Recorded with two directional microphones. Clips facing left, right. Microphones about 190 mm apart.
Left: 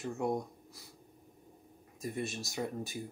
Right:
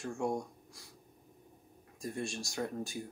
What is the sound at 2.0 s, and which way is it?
Speech, 5° left (ahead or behind).